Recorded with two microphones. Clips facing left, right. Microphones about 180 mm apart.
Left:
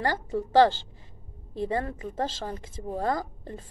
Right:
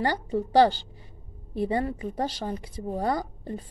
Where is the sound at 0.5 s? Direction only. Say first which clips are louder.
Even; 15° right (ahead or behind).